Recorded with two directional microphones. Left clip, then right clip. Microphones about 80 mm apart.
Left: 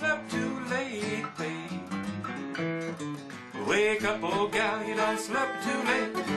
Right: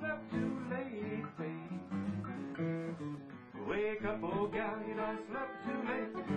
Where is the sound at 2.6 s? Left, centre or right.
Right.